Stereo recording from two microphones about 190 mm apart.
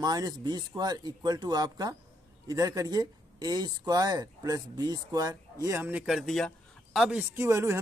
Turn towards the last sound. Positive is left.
turn(degrees=-15)  # may be behind; listen again after turning